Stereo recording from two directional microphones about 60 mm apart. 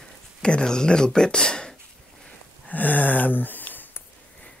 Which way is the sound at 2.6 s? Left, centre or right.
Left.